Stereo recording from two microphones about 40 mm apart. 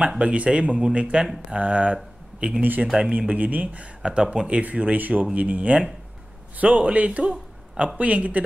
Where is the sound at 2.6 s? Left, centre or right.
Right.